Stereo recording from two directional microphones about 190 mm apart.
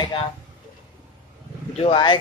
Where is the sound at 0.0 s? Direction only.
25° left (ahead or behind).